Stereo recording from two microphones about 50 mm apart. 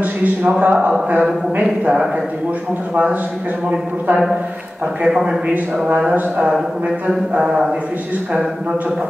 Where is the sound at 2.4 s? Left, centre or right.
Right.